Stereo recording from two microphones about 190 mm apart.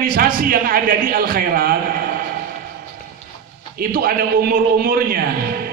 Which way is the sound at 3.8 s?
50° right (ahead or behind).